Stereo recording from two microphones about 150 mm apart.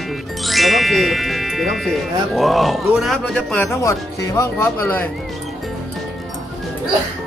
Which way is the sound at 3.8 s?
20° left (ahead or behind).